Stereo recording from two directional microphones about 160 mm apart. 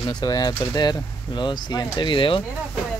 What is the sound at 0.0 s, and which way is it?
Speech, 25° left (ahead or behind).